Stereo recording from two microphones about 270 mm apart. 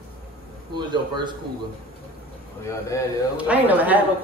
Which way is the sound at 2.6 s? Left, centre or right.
Centre.